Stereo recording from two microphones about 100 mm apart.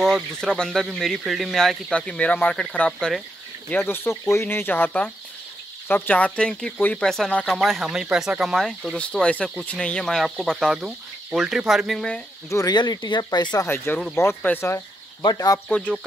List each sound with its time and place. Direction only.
0.0 s speech: centre (ahead or behind)
3.7 s speech: 20° left (ahead or behind); by 12.1 s centre (ahead or behind)
12.4 s speech: 30° left (ahead or behind)
12.7 s speech: 45° left (ahead or behind)
13.9 s speech: 20° left (ahead or behind)
15.3 s speech: 40° left (ahead or behind)